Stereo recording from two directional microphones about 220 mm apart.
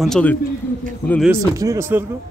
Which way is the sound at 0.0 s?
5° left (ahead or behind).